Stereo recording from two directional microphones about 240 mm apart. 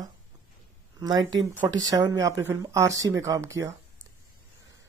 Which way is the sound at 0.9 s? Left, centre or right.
Centre.